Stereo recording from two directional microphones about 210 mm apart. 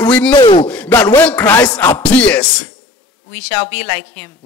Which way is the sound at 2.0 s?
5° left (ahead or behind).